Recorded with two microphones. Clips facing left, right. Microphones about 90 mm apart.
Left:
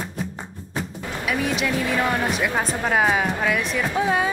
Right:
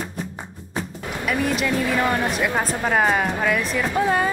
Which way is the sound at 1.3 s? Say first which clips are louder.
Right 1 dB; centre (ahead or behind).